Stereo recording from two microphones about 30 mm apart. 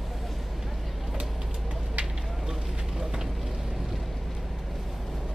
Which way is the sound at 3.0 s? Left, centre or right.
Right.